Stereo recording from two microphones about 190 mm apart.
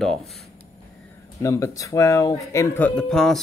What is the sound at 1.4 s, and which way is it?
A man's voice, 15° left (ahead or behind).